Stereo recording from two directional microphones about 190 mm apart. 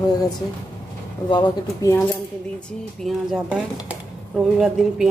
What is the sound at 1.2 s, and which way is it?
Speech, 25° left (ahead or behind).